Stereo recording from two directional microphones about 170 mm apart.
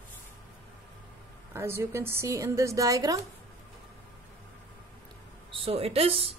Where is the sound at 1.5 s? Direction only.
15° right (ahead or behind).